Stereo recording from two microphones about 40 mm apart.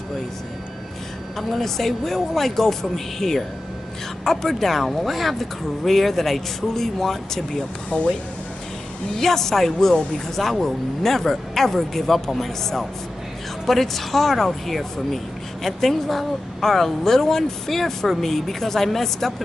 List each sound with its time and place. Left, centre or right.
1.5 s speech: centre
7.9 s speech: left
9.1 s a woman's voice: centre